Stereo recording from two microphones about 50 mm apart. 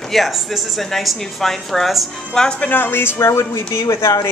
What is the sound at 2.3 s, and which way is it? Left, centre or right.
Speech, centre.